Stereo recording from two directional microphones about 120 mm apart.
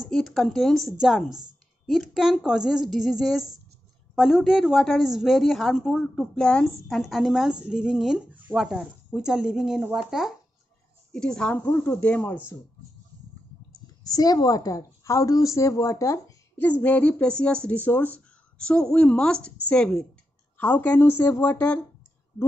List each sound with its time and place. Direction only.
0.1 s a woman's voice: 5° left (ahead or behind)
11.1 s a woman's voice: 5° left (ahead or behind)
11.5 s speech: 20° left (ahead or behind)
14.0 s a woman's voice: 30° left (ahead or behind)
16.8 s speech: 10° left (ahead or behind)